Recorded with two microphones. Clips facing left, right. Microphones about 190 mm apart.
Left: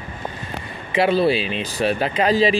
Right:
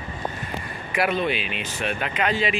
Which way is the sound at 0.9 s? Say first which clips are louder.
Left 6 dB; 30° left (ahead or behind).